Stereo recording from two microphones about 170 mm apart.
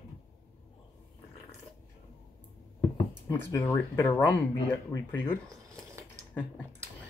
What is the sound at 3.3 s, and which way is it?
Speech, 15° left (ahead or behind).